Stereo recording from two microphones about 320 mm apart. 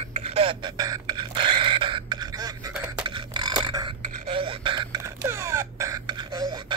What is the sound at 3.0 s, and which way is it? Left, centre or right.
Burping, centre.